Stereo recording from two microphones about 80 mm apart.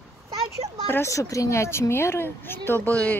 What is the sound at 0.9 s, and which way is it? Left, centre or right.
A woman's voice, left.